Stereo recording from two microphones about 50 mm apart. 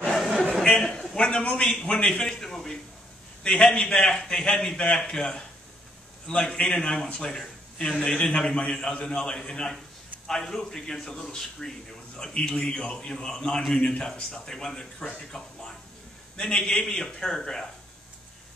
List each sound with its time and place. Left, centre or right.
0.7 s a sound: centre
1.2 s a man's voice: centre
16.3 s a man's voice: centre